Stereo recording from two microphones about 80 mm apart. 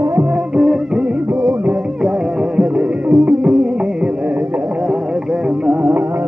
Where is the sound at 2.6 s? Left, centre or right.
Centre.